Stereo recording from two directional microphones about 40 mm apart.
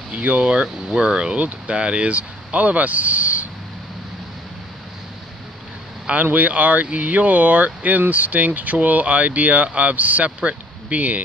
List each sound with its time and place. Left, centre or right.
0.1 s speech: right
0.8 s speech: centre; by 3.4 s right
6.3 s speech: right